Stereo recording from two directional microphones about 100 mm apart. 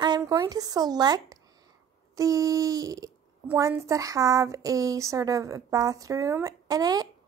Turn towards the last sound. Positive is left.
turn(degrees=-40)  # may be behind; listen again after turning